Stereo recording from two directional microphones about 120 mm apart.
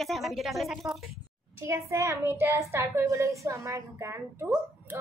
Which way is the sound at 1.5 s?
20° right (ahead or behind).